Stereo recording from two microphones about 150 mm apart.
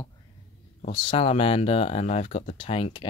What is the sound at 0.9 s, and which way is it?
Speech, 35° left (ahead or behind).